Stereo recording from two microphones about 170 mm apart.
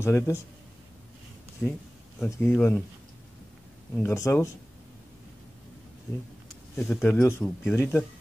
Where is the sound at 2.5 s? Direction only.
10° left (ahead or behind).